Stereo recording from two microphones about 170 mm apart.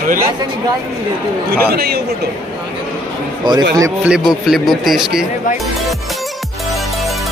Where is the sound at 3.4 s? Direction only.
25° right (ahead or behind).